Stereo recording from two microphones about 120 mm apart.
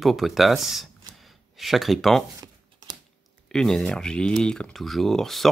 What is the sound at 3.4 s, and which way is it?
Speech, 5° left (ahead or behind).